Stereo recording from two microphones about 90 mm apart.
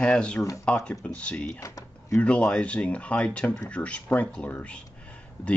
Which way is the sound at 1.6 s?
40° left (ahead or behind).